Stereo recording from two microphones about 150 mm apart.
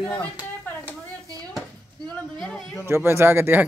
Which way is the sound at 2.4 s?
Centre (ahead or behind).